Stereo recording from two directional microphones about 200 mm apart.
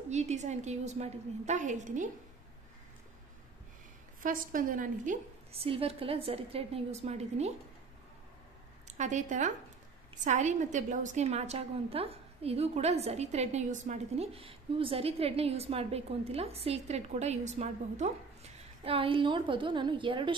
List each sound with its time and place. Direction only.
0.1 s a woman's voice: 35° right (ahead or behind)
4.2 s a woman's voice: 40° right (ahead or behind)
8.9 s a woman's voice: 40° right (ahead or behind)